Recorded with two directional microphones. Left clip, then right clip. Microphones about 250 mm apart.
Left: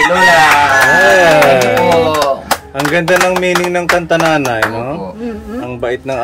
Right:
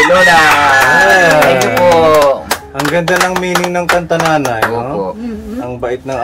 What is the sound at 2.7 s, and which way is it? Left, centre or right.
Speech, centre.